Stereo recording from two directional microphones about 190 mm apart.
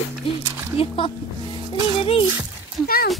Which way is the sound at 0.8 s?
30° left (ahead or behind).